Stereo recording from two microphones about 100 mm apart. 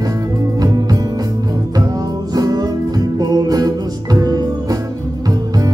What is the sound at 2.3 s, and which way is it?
Music, 40° right (ahead or behind).